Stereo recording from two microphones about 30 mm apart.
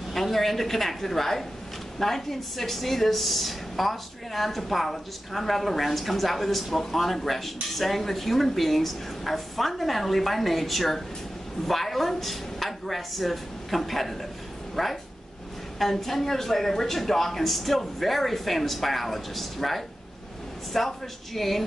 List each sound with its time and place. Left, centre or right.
0.1 s a woman's voice: centre